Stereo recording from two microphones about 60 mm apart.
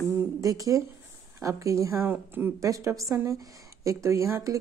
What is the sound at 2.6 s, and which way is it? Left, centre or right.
Speech, right.